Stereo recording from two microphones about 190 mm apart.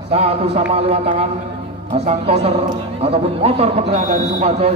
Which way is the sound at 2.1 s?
35° right (ahead or behind).